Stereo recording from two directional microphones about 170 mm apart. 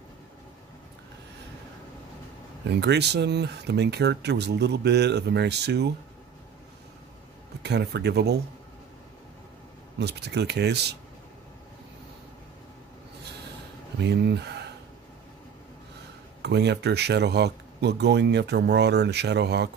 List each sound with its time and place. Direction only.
2.7 s speech: 80° right
7.6 s speech: 80° right
9.9 s speech: 80° right
14.0 s speech: 80° right
16.4 s speech: 80° right